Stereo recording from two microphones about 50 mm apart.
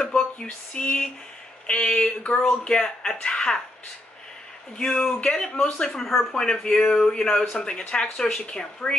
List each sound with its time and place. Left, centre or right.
0.1 s a sound: centre
0.7 s speech: centre
4.7 s speech: centre
6.3 s speech: centre
8.2 s speech: centre